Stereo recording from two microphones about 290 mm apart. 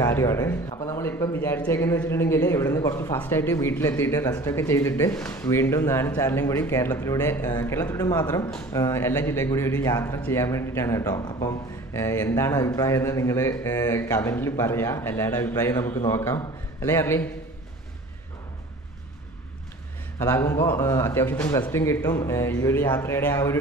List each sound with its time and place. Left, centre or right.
0.0 s speech: centre
20.2 s speech: centre